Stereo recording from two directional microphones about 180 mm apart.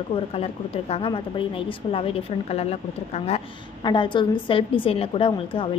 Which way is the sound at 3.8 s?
25° left (ahead or behind).